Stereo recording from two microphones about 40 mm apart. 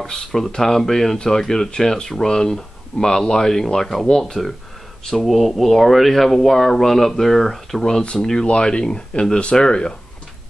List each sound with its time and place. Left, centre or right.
0.0 s speech: centre
5.2 s speech: centre
8.5 s speech: left